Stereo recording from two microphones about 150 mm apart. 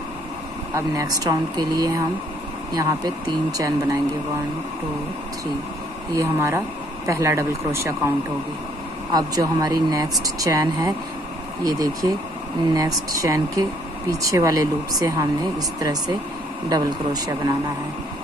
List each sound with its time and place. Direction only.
0.7 s speech: 25° right (ahead or behind)
6.1 s speech: 20° right (ahead or behind)
9.1 s speech: 25° right (ahead or behind)